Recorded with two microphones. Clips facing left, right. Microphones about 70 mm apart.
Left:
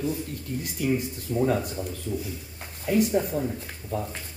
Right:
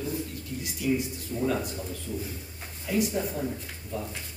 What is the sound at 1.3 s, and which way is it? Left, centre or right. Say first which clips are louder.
Speech: left 6 dB; left.